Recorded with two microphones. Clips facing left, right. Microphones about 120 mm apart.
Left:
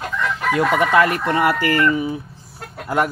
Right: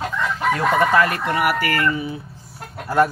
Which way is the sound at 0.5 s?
15° left (ahead or behind).